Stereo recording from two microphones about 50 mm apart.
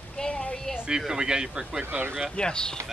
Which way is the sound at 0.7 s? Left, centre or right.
Centre.